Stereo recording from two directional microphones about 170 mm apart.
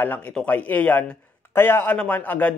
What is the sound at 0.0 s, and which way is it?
A man's voice, 10° left (ahead or behind).